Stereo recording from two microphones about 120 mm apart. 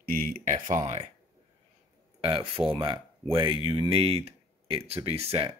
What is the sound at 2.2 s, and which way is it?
Speech, 45° right (ahead or behind).